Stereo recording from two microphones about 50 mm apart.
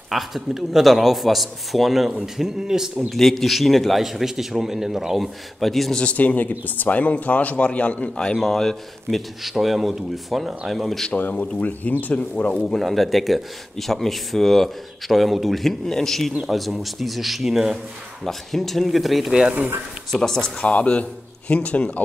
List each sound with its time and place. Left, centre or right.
0.1 s a man's voice: centre
3.1 s speech: centre
6.1 s speech: left
8.4 s speech: centre
11.1 s speech: left
12.6 s speech: centre
20.1 s speech: centre
20.6 s a man's voice: left